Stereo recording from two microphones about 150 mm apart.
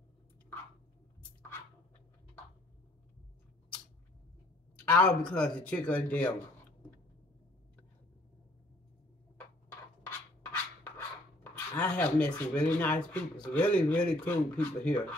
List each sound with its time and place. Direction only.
4.8 s speech: 10° left (ahead or behind)
10.0 s scratch: 15° left (ahead or behind)
11.5 s speech: 10° left (ahead or behind)